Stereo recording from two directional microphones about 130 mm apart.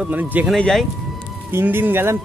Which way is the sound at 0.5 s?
Centre (ahead or behind).